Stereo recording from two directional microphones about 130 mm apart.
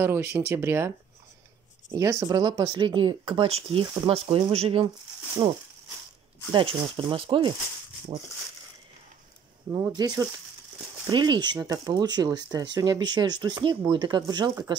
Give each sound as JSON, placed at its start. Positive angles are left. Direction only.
{"t": 0.0, "sound": "speech", "side_deg": -20}
{"t": 9.7, "sound": "speech", "side_deg": -30}